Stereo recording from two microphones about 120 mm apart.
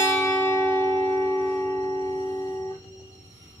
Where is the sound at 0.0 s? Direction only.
20° left (ahead or behind).